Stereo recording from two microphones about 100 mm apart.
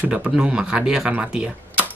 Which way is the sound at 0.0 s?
10° right (ahead or behind).